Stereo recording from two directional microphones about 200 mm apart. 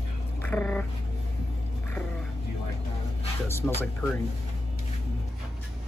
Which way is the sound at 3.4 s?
10° left (ahead or behind).